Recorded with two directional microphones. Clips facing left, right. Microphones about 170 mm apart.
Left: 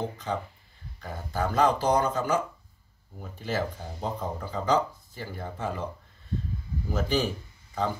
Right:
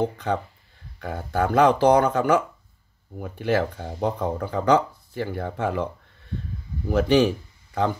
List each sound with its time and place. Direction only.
0.0 s speech: 65° right (ahead or behind)
6.9 s speech: 70° right (ahead or behind)